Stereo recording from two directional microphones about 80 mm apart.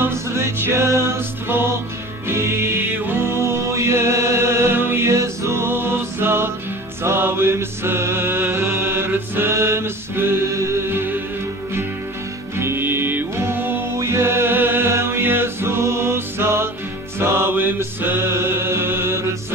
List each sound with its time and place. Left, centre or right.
0.0 s music: right
7.0 s mantra: right
12.5 s music: right
13.9 s music: right